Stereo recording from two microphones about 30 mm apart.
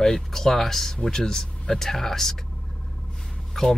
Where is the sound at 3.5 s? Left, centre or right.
Centre.